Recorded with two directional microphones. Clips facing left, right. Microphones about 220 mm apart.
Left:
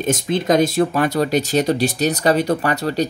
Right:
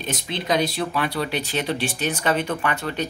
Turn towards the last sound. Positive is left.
turn(degrees=35)  # may be behind; listen again after turning